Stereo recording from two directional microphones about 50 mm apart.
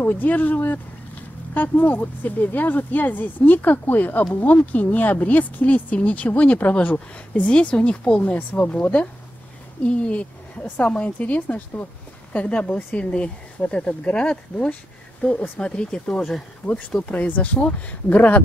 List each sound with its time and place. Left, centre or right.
0.0 s a woman's voice: left; by 16.0 s centre
16.1 s speech: centre
17.0 s a woman's voice: left